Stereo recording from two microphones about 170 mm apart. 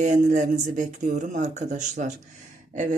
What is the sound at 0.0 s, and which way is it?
Speech, 45° right (ahead or behind).